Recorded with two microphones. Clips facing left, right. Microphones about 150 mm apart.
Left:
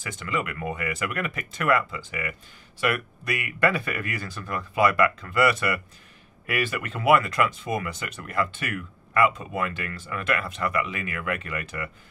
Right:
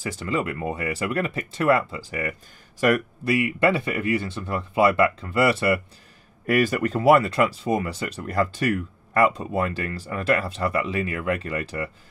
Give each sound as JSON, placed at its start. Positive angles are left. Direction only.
{"t": 0.0, "sound": "speech", "side_deg": -35}
{"t": 3.3, "sound": "speech", "side_deg": -25}
{"t": 6.4, "sound": "speech", "side_deg": -40}